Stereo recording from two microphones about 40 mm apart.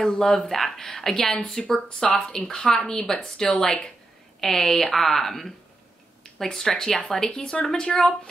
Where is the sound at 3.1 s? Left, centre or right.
Left.